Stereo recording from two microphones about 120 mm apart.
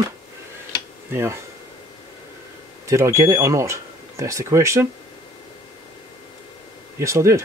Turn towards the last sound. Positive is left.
turn(degrees=-25)  # may be behind; listen again after turning